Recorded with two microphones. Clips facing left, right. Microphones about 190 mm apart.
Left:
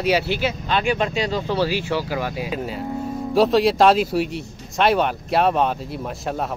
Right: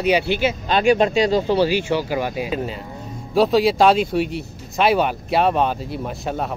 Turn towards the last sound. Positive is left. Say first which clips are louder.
# right 1 dB
turn(degrees=0)  # may be behind; listen again after turning